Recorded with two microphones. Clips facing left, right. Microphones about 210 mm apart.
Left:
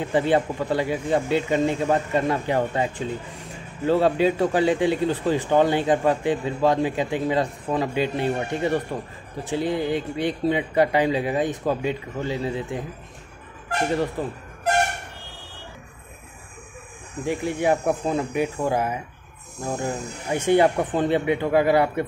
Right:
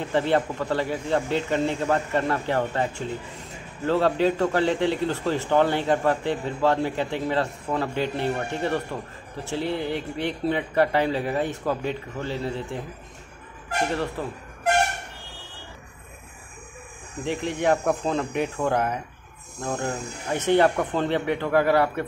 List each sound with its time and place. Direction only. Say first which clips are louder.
0.0 s a man's voice: left 2 dB; 15° left (ahead or behind)
14.2 s a man's voice: left 3 dB; 15° left (ahead or behind)
17.2 s a man's voice: left 2 dB; 10° left (ahead or behind)